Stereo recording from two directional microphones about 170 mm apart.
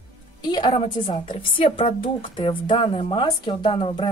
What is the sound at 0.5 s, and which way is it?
A woman's voice, 30° left (ahead or behind).